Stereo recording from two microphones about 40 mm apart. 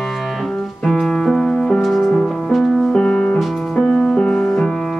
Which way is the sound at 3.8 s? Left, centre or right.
Centre.